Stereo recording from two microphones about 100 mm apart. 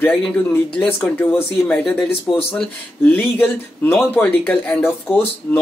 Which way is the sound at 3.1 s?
20° left (ahead or behind).